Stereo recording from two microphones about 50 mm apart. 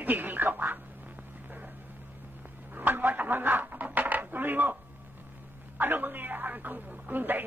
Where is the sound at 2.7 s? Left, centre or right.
Right.